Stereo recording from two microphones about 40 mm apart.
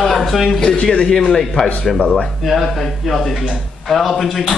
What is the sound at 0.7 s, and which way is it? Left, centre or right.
Speech, left.